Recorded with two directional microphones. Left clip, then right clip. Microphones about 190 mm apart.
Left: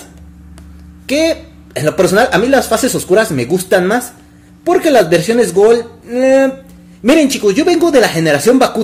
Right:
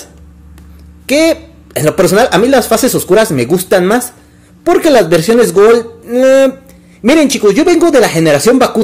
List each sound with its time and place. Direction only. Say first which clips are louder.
1.0 s a woman's voice: right 4 dB; 25° right (ahead or behind)